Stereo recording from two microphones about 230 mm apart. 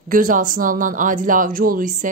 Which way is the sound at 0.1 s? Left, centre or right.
Right.